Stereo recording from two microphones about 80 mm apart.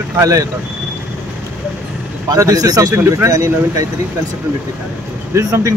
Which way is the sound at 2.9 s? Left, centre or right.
Right.